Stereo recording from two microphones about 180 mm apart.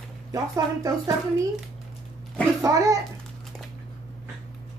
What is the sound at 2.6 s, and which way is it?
Speech, 20° right (ahead or behind).